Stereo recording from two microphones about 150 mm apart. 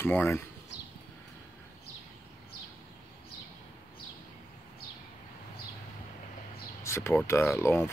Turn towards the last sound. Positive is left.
turn(degrees=15)  # may be behind; listen again after turning